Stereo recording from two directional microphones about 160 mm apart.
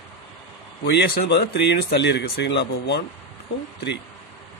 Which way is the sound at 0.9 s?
85° left.